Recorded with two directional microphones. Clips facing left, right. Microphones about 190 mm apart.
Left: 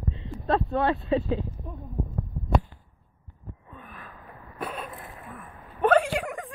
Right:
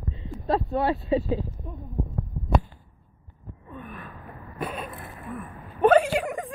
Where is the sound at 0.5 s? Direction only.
10° right (ahead or behind).